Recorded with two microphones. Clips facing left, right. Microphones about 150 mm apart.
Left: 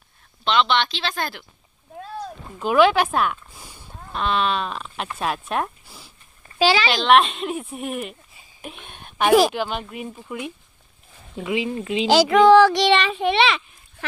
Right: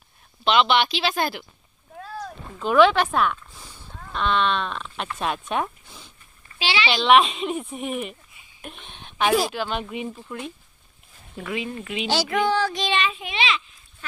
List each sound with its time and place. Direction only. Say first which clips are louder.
0.4 s speech: right 1 dB; 10° right (ahead or behind)
2.0 s splash: left 2 dB; 20° left (ahead or behind)
2.6 s speech: even; 5° left (ahead or behind)
6.6 s speech: left 6 dB; 40° left (ahead or behind)
7.0 s a woman's voice: right 3 dB; centre (ahead or behind)
8.5 s a sound: left 2 dB; 5° left (ahead or behind)
9.6 s a woman's voice: left 1 dB; 5° left (ahead or behind)
10.1 s speech: left 3 dB; 10° left (ahead or behind)
11.5 s speech: left 6 dB; 25° left (ahead or behind)
12.3 s a child's voice: left 13 dB; 90° left; by 14.0 s 65° left (ahead or behind)